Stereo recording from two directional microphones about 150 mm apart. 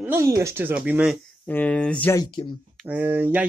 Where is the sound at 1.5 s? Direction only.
10° left (ahead or behind).